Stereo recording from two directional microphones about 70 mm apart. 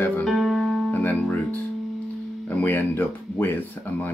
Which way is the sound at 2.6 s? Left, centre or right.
Left.